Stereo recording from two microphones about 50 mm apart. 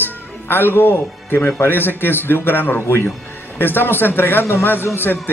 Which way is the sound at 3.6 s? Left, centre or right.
Left.